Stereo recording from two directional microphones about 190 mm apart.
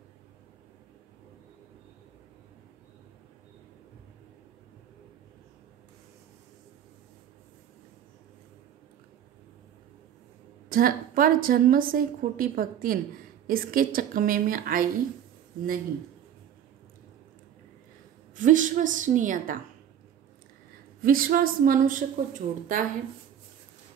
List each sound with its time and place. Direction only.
10.7 s a woman's voice: 50° right (ahead or behind)
18.3 s a woman's voice: 45° right (ahead or behind)
21.0 s a woman's voice: 50° right (ahead or behind)